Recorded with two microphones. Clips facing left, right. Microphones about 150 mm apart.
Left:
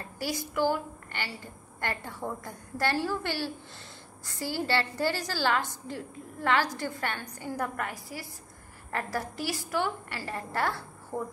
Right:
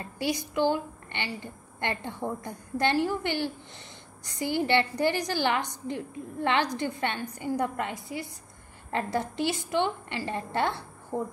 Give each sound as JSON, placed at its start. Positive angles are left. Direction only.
{"t": 0.0, "sound": "a woman's voice", "side_deg": -20}